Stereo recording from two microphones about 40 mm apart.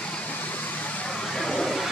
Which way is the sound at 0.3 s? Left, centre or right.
Left.